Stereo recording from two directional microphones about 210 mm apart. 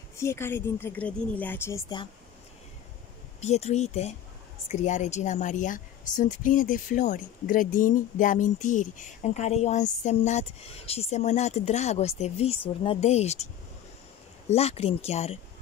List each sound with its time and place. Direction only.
0.2 s a woman's voice: 10° left (ahead or behind)
3.3 s a woman's voice: 30° left (ahead or behind)
14.5 s speech: 30° left (ahead or behind)